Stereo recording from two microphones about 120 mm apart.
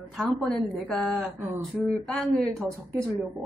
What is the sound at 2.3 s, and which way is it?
Speech, 5° left (ahead or behind).